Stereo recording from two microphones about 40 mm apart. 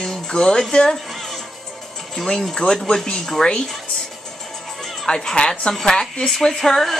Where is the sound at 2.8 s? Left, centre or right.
Left.